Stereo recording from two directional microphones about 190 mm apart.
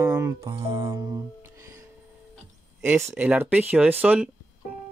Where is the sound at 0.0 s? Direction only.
20° right (ahead or behind).